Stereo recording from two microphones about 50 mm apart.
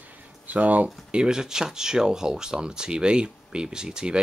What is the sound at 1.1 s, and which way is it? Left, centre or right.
Speech, centre.